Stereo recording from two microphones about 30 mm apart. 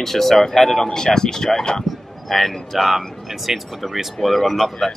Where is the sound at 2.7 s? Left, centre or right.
Centre.